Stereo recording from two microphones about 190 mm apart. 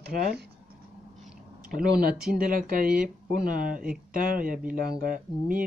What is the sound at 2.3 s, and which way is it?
Speech, 50° right (ahead or behind).